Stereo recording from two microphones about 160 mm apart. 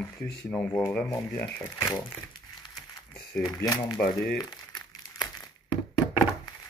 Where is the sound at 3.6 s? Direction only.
20° left (ahead or behind).